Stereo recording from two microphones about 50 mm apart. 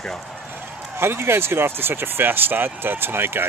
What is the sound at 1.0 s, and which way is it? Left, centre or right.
Speech, right.